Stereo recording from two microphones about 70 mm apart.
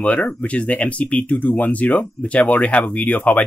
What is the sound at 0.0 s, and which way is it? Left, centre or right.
Speech, left.